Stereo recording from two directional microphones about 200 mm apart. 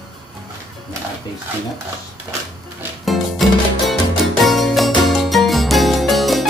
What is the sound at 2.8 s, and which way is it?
Music, centre (ahead or behind).